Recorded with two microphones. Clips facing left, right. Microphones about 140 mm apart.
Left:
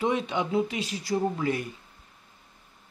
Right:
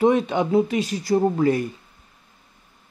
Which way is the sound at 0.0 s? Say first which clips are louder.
Right 8 dB; 50° right (ahead or behind).